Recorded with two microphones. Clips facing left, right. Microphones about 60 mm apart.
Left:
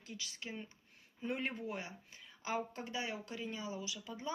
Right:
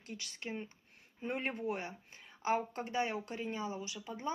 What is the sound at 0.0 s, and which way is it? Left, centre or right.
Speech, right.